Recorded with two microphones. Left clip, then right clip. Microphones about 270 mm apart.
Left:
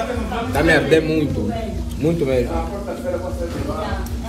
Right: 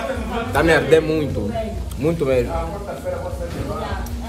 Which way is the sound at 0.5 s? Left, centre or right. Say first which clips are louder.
Right 1 dB; centre.